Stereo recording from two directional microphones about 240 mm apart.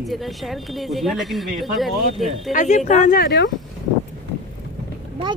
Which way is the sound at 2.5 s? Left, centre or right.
Left.